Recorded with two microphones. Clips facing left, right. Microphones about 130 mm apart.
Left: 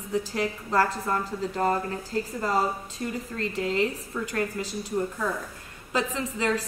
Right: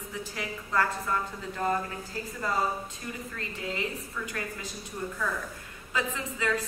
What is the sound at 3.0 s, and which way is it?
Speech, 45° left (ahead or behind).